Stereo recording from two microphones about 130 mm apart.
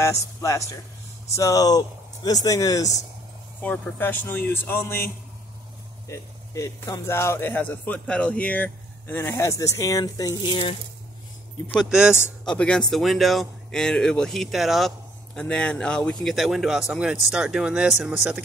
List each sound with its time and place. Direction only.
0.0 s speech: 25° left (ahead or behind)
3.6 s speech: 10° left (ahead or behind)
6.0 s speech: 25° left (ahead or behind)
11.7 s speech: 5° right (ahead or behind)
12.4 s speech: 10° left (ahead or behind)